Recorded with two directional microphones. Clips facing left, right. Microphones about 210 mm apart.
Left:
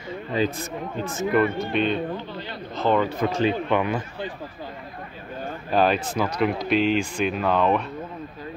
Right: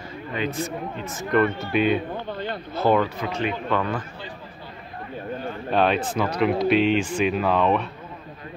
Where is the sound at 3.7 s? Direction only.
15° left (ahead or behind).